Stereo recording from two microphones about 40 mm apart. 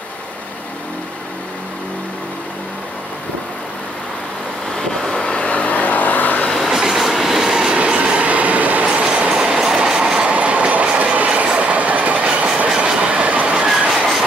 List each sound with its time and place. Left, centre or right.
4.7 s vehicle: centre
5.2 s vehicle: left
6.7 s train: centre
7.6 s train: right
9.3 s train: centre
10.1 s train: right